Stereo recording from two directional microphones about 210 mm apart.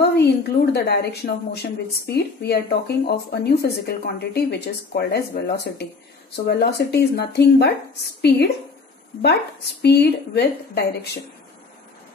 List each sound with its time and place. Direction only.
0.0 s a woman's voice: 55° left (ahead or behind)
9.2 s a woman's voice: 50° left (ahead or behind)